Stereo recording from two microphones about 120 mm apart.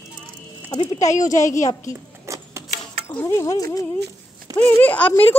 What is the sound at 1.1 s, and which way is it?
Speech, 90° left.